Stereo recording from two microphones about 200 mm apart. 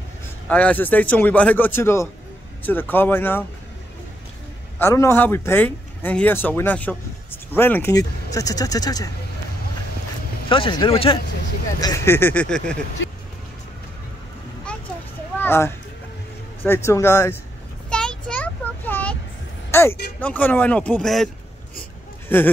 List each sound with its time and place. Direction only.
0.5 s speech: 5° left (ahead or behind)
4.7 s speech: 15° left (ahead or behind)
10.5 s speech: 25° left (ahead or behind)
11.8 s speech: 15° left (ahead or behind)
15.3 s a sound: 10° left (ahead or behind)
16.6 s speech: 10° left (ahead or behind)
17.8 s a sound: 5° left (ahead or behind)
20.2 s speech: 10° left (ahead or behind)
22.3 s speech: 10° left (ahead or behind)